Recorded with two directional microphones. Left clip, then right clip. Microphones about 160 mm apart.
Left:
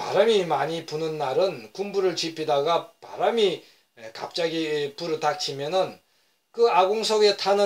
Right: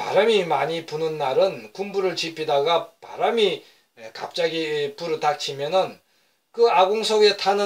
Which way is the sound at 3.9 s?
25° left (ahead or behind).